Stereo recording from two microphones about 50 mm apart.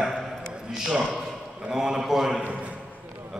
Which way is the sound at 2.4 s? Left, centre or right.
Right.